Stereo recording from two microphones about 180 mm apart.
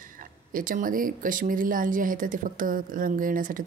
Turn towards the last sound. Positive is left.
turn(degrees=-50)  # may be behind; listen again after turning